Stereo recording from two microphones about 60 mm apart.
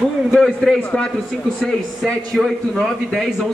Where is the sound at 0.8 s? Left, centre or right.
Left.